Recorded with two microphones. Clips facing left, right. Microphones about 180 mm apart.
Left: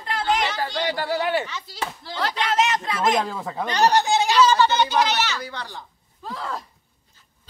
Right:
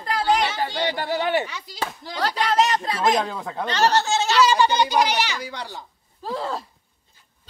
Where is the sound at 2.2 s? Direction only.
40° right (ahead or behind).